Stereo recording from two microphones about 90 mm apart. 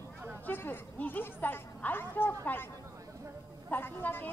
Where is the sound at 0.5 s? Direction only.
20° left (ahead or behind).